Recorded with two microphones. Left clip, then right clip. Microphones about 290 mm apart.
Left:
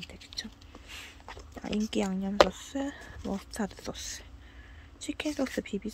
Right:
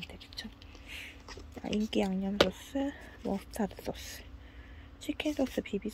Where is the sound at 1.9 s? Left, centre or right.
Centre.